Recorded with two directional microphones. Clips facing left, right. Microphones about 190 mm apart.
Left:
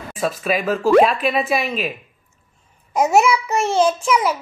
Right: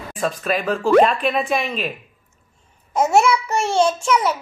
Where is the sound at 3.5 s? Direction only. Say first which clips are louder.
Left 1 dB; 30° right (ahead or behind).